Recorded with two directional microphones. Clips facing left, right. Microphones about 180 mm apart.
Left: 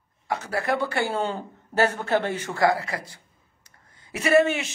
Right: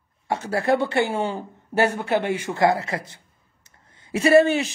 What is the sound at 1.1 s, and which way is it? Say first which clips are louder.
A man's voice: right 2 dB; 10° right (ahead or behind).